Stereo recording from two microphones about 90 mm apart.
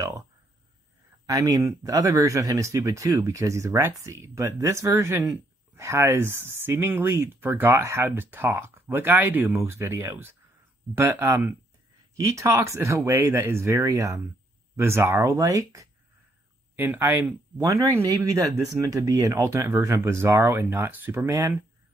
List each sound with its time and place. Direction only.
1.2 s speech: 40° right (ahead or behind)
16.7 s speech: 20° right (ahead or behind)
17.6 s speech: 40° right (ahead or behind)